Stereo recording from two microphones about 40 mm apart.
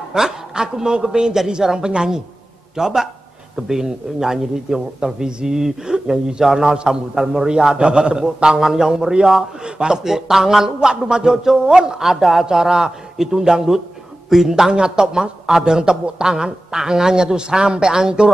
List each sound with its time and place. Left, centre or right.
0.1 s a man's voice: centre
7.7 s a man's voice: right
9.6 s a man's voice: right
10.0 s a man's voice: centre
10.9 s a man's voice: right
12.0 s a man's voice: centre